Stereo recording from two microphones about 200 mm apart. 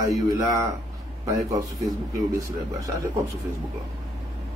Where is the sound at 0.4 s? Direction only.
15° right (ahead or behind).